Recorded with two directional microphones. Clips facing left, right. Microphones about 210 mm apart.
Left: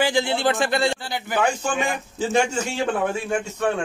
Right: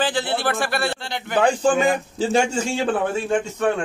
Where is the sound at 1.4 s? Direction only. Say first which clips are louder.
Right 7 dB; 30° right (ahead or behind).